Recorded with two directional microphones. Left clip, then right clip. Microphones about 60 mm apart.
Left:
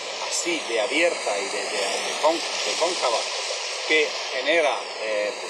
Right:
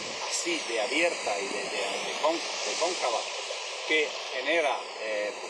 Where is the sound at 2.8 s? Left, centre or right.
Left.